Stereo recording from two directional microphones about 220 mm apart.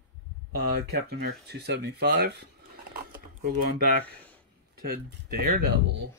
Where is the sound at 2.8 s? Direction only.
40° right (ahead or behind).